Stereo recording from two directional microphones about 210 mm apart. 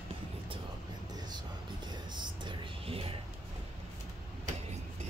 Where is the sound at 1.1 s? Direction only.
20° right (ahead or behind).